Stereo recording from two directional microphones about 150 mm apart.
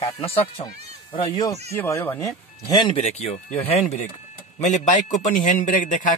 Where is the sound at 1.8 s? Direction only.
15° left (ahead or behind).